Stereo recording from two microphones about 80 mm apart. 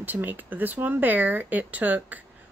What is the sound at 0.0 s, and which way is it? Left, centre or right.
Speech, right.